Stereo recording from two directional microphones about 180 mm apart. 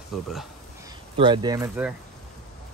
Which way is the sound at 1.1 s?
25° right (ahead or behind).